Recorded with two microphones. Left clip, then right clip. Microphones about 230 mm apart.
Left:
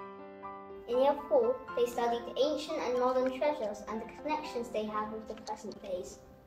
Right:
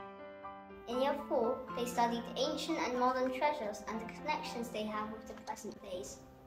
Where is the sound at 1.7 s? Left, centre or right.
Centre.